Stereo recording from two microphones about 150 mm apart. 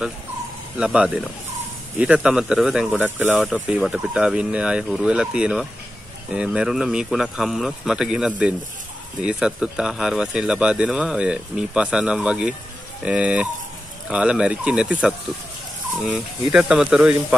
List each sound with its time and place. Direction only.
0.7 s speech: 5° right (ahead or behind)